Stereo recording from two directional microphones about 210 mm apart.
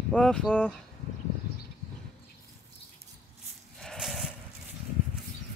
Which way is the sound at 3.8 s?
Centre (ahead or behind).